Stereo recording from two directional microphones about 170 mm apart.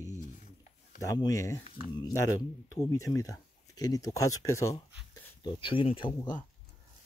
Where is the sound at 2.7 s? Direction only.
20° left (ahead or behind).